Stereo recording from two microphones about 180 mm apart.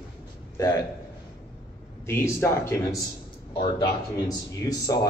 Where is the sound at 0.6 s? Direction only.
20° left (ahead or behind).